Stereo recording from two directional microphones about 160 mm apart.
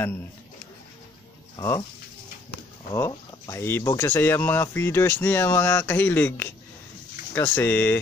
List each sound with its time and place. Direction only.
1.6 s speech: 20° left (ahead or behind)
2.9 s speech: 20° left (ahead or behind)